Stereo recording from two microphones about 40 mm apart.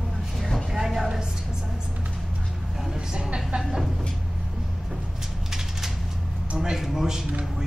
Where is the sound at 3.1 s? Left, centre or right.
Right.